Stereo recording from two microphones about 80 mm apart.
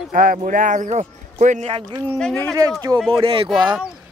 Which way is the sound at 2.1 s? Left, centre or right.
Centre.